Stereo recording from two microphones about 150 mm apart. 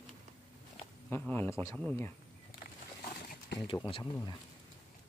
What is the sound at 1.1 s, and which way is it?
Speech, 15° left (ahead or behind).